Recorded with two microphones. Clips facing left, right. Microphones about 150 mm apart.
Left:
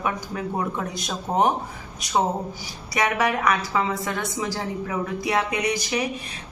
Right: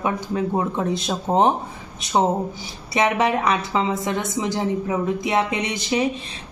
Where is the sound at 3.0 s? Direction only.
25° right (ahead or behind).